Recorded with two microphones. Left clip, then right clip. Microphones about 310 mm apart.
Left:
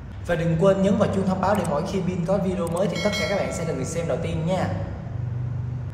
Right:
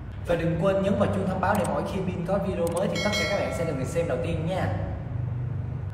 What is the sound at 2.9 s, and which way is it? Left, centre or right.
Speech, centre.